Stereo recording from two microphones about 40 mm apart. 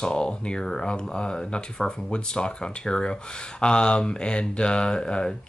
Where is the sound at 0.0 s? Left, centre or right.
Left.